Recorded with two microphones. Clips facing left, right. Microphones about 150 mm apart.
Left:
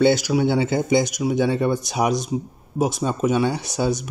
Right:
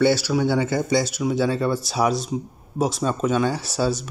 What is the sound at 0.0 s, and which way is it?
Speech, 15° left (ahead or behind).